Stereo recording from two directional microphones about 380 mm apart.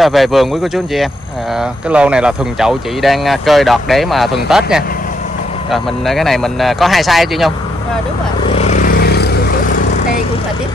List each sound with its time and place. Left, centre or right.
0.0 s speech: centre
8.5 s vehicle: centre